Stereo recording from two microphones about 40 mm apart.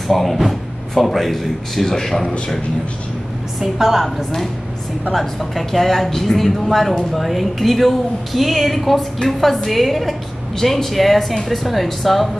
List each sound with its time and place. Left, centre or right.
0.1 s speech: centre
2.2 s a man's voice: left
3.5 s a woman's voice: centre
4.0 s speech: centre